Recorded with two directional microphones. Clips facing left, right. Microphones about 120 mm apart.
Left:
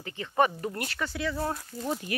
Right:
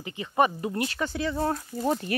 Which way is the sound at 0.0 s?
15° right (ahead or behind).